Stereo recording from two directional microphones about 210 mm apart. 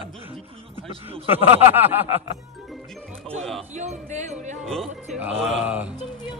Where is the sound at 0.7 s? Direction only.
25° right (ahead or behind).